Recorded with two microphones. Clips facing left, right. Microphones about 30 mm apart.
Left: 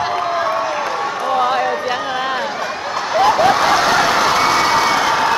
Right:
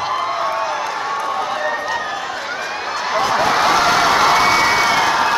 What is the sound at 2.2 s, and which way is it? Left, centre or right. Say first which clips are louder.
Run: left 5 dB; left.